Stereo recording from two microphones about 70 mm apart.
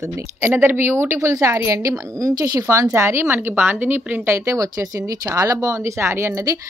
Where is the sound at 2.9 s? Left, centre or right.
Right.